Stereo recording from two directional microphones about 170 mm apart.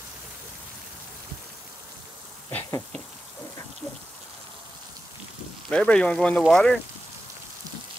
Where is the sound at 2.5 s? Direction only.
15° left (ahead or behind).